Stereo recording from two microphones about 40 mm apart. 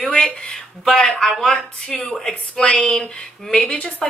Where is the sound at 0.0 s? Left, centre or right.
Left.